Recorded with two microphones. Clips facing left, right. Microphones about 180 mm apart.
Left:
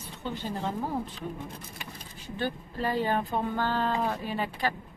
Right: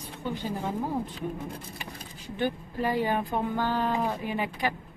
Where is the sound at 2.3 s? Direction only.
15° right (ahead or behind).